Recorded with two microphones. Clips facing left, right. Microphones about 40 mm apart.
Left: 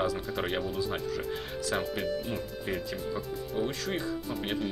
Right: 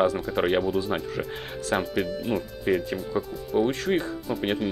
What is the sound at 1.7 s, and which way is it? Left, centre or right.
Speech, centre.